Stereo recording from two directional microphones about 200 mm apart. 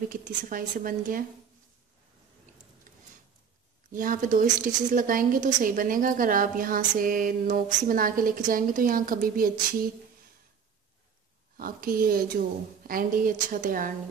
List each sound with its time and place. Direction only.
0.1 s speech: 45° right (ahead or behind)
3.9 s speech: 40° right (ahead or behind)
11.5 s speech: 45° right (ahead or behind)